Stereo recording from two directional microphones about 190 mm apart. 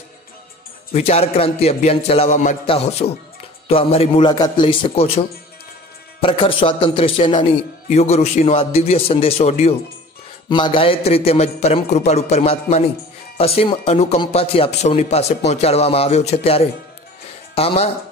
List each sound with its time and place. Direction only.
0.9 s a man's voice: 35° left (ahead or behind)
6.2 s a man's voice: 25° left (ahead or behind)